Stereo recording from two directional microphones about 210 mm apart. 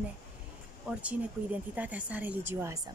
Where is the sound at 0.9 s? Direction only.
5° right (ahead or behind).